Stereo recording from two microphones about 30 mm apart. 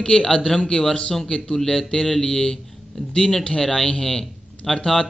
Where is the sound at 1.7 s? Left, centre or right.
Centre.